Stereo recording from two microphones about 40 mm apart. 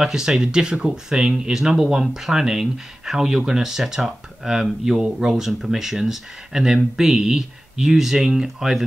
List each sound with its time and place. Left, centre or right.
0.0 s speech: centre